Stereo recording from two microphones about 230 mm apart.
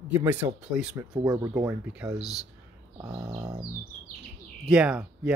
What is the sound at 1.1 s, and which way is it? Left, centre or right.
Speech, centre.